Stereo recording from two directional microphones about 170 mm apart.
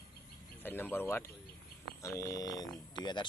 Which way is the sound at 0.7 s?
10° left (ahead or behind).